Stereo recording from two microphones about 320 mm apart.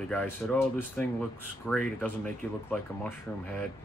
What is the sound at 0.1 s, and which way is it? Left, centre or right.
Speech, centre.